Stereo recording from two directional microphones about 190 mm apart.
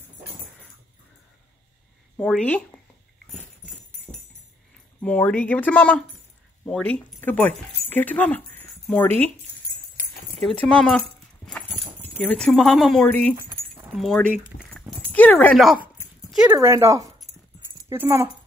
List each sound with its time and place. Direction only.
2.1 s speech: 5° left (ahead or behind)
3.3 s dog: centre (ahead or behind)
5.0 s speech: 10° left (ahead or behind)
10.7 s speech: 5° left (ahead or behind)
12.0 s speech: 10° left (ahead or behind)
13.4 s keys jangling: 15° right (ahead or behind)
13.9 s speech: centre (ahead or behind)
14.4 s dog: 5° left (ahead or behind)
16.5 s speech: 15° right (ahead or behind)